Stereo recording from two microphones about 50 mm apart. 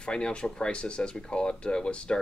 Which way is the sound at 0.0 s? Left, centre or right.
Centre.